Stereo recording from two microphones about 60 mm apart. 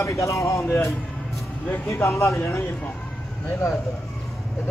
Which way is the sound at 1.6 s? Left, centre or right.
Left.